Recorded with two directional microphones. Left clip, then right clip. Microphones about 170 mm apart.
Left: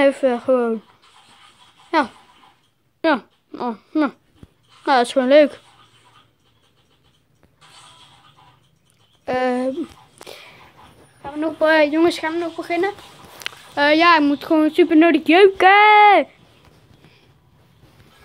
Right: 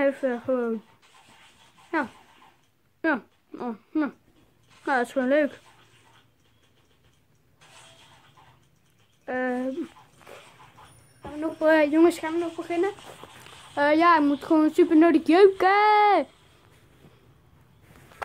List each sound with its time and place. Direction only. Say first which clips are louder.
0.0 s speech: left 8 dB; 5° left (ahead or behind)
1.9 s babbling: left 9 dB; centre (ahead or behind)
3.0 s speech: left 7 dB; centre (ahead or behind)
9.2 s speech: left 8 dB; 5° left (ahead or behind)
11.8 s speech: left 4 dB; centre (ahead or behind)
12.2 s speech: left 5 dB; 20° left (ahead or behind)
13.4 s speech: left 6 dB; 15° left (ahead or behind)